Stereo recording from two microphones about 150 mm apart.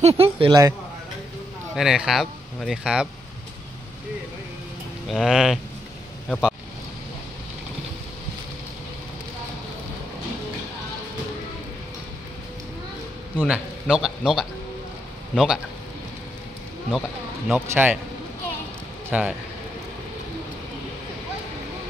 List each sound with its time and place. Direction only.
0.0 s speech: 40° right (ahead or behind)
1.8 s speech: 5° right (ahead or behind)
5.1 s speech: centre (ahead or behind)
13.4 s speech: 5° right (ahead or behind)
17.5 s speech: 10° right (ahead or behind)
19.0 s a man's voice: 10° right (ahead or behind)